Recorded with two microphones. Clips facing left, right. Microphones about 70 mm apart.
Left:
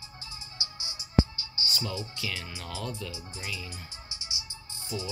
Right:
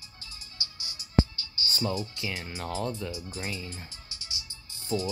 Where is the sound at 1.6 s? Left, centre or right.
Right.